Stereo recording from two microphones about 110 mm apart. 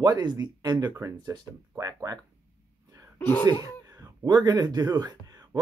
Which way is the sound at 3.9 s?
30° right (ahead or behind).